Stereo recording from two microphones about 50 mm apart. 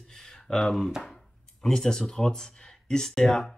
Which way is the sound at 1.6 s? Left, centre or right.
Centre.